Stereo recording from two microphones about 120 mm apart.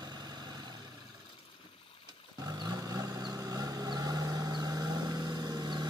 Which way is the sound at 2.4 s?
30° right (ahead or behind).